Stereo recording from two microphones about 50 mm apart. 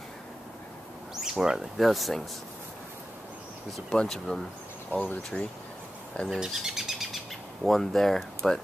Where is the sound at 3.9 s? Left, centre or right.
Centre.